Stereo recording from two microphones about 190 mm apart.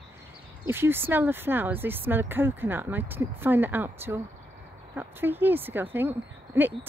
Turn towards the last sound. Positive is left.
turn(degrees=-10)  # may be behind; listen again after turning